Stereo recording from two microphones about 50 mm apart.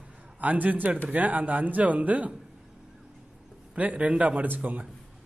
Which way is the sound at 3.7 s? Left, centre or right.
Right.